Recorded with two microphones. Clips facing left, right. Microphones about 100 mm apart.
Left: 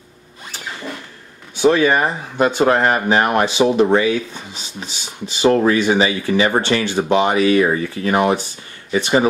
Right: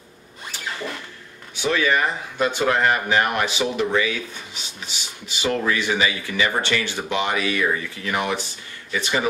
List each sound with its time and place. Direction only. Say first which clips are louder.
1.6 s speech: left 7 dB; 35° left (ahead or behind)